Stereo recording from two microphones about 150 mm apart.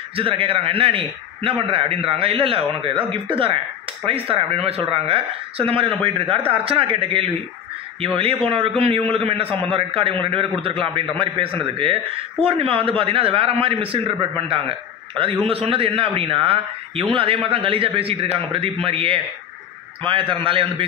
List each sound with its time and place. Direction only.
0.1 s a man's voice: 40° right (ahead or behind)